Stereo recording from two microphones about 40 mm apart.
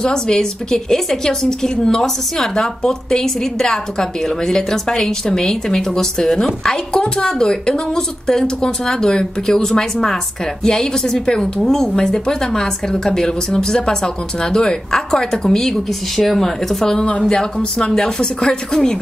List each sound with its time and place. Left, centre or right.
0.0 s a woman's voice: centre
16.9 s a woman's voice: left